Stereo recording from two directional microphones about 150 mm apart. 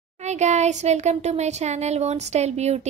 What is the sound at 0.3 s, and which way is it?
Speech, 50° right (ahead or behind).